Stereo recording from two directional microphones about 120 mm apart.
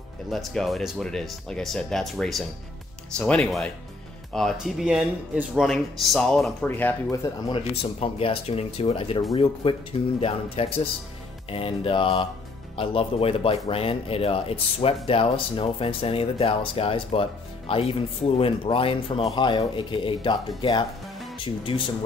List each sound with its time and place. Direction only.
0.3 s speech: centre (ahead or behind)
5.7 s speech: 5° left (ahead or behind)
7.5 s speech: 50° left (ahead or behind)